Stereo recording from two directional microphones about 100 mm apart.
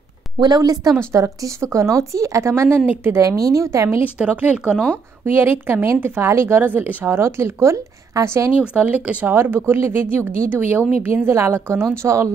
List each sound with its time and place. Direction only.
0.4 s speech: 40° right (ahead or behind)
4.0 s speech: 15° right (ahead or behind); by 8.5 s 30° right (ahead or behind)
8.5 s speech: 15° right (ahead or behind)